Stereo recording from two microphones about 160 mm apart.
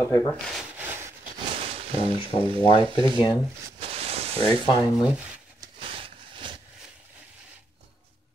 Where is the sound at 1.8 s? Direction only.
35° right (ahead or behind).